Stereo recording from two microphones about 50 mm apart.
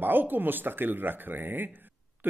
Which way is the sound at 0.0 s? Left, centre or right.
Right.